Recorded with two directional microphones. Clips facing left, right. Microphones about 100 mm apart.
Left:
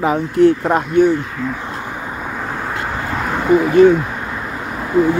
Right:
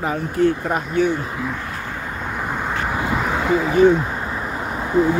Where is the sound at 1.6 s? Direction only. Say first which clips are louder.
Left 3 dB; 20° left (ahead or behind).